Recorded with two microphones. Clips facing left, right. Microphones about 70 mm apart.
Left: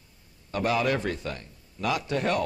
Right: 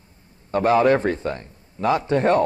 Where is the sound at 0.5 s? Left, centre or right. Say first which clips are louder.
Right 9 dB; right.